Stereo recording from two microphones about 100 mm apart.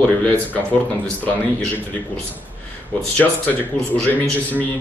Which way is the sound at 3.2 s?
10° left (ahead or behind).